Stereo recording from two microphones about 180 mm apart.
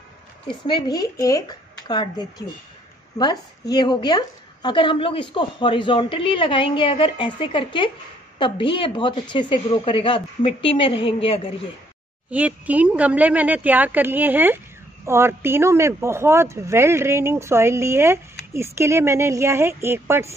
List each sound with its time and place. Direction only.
0.5 s a woman's voice: 25° left (ahead or behind)
12.3 s speech: 10° right (ahead or behind)